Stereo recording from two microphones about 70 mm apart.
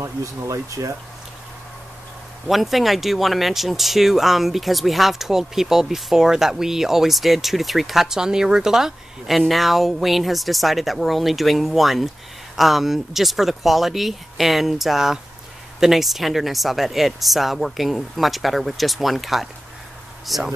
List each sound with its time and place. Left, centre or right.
0.0 s speech: right
2.4 s speech: centre